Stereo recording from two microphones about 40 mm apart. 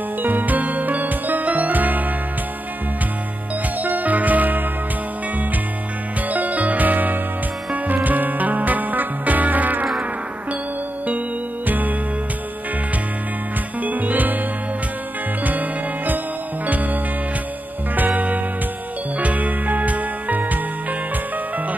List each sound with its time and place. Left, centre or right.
0.2 s music: right
3.8 s music: right
6.3 s music: right
11.6 s music: right
13.8 s music: right
15.4 s music: right